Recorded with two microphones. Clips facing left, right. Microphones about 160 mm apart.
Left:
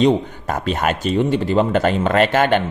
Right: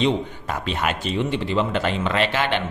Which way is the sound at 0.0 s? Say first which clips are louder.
Left 6 dB; 45° left (ahead or behind).